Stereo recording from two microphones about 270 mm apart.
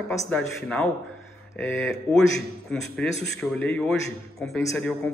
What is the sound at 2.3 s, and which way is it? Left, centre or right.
A man's voice, centre.